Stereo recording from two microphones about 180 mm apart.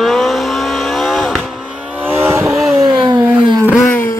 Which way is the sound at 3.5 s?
Centre (ahead or behind).